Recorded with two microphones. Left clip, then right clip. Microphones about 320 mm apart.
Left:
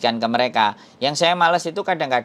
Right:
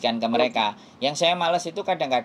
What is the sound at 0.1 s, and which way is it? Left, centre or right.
Speech, left.